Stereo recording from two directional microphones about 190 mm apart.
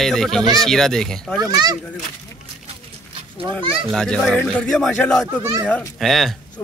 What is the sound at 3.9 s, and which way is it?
Speech, 5° left (ahead or behind).